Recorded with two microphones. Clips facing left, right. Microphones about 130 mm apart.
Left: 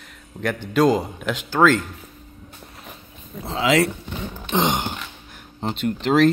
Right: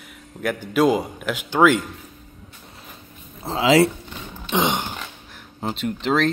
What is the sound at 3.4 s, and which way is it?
Speech, 30° right (ahead or behind).